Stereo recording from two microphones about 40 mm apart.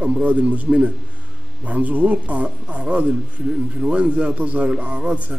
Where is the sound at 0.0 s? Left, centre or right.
Right.